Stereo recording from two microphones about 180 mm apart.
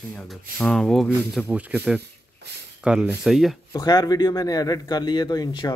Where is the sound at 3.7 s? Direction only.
20° left (ahead or behind).